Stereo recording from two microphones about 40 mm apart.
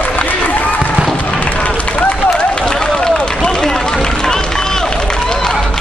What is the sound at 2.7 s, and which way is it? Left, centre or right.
Run, left.